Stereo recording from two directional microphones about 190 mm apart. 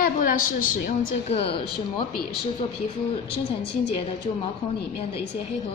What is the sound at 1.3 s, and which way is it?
Speech, 30° left (ahead or behind).